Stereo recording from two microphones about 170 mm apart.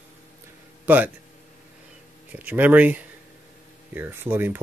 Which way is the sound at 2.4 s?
10° right (ahead or behind).